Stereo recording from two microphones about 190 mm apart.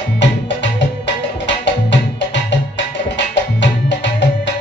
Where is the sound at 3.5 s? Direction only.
65° left (ahead or behind).